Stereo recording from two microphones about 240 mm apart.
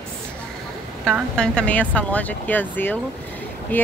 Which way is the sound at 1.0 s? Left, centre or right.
Centre.